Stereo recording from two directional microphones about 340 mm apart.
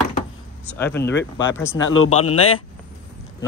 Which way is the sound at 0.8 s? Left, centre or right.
Centre.